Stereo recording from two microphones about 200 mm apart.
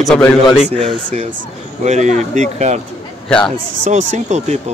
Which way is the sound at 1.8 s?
35° right (ahead or behind).